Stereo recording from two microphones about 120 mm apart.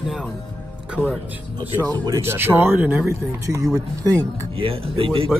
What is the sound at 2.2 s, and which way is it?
Speech, 20° right (ahead or behind).